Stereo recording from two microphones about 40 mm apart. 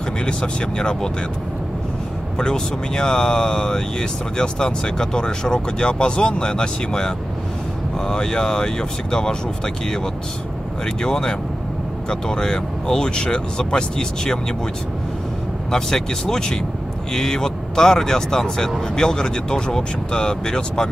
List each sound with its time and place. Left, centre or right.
0.2 s speech: left
2.3 s speech: centre
11.0 s speech: centre
15.7 s speech: centre